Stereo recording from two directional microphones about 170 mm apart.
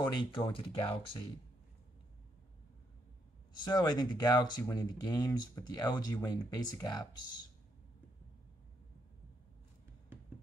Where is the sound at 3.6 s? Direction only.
25° left (ahead or behind).